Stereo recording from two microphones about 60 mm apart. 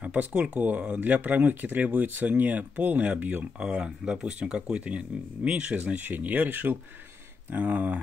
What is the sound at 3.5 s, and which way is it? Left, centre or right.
Speech, centre.